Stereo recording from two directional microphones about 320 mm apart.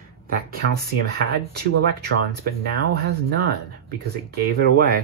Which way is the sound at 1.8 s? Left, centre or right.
Right.